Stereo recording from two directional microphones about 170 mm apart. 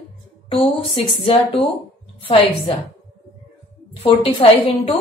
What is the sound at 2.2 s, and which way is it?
Speech, 30° left (ahead or behind).